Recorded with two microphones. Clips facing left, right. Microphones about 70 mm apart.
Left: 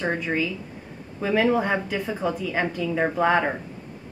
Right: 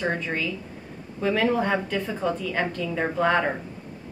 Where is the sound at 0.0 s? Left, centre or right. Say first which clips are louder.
Left 2 dB; centre.